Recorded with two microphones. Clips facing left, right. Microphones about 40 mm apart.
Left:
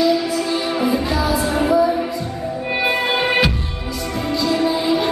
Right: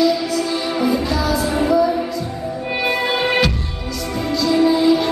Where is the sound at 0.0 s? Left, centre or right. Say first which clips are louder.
Even; centre.